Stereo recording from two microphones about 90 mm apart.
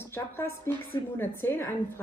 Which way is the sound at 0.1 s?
25° left (ahead or behind).